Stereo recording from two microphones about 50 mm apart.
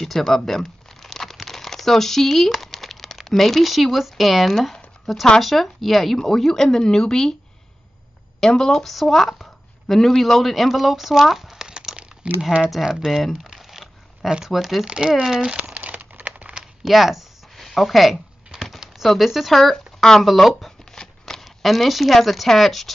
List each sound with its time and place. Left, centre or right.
0.0 s speech: centre
0.5 s crumpling: centre
5.4 s speech: centre
8.4 s speech: centre
13.3 s crumpling: centre
14.3 s speech: centre
14.9 s speech: centre
15.5 s crumpling: right
16.8 s a sound: centre
19.0 s speech: centre
20.9 s a sound: centre
21.6 s speech: centre